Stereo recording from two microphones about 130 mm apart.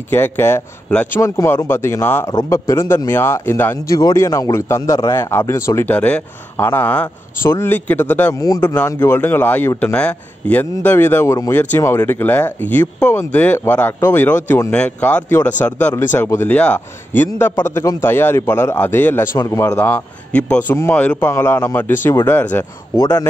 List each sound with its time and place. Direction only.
0.1 s a man's voice: 20° left (ahead or behind)
8.4 s a man's voice: 30° left (ahead or behind)
22.9 s a man's voice: 25° left (ahead or behind)